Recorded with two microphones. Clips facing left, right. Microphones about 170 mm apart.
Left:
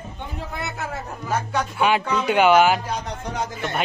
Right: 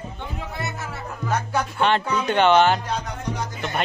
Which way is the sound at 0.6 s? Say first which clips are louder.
Left 4 dB; 60° left (ahead or behind).